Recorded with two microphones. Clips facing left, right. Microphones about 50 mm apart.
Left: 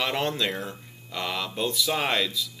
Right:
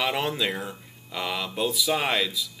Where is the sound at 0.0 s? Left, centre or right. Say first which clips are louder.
Right 1 dB; centre.